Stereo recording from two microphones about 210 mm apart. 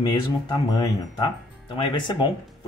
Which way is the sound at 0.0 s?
20° left (ahead or behind).